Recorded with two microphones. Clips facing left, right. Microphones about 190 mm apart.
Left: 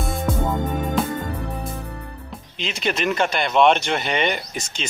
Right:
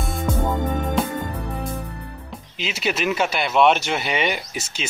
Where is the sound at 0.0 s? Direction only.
Centre (ahead or behind).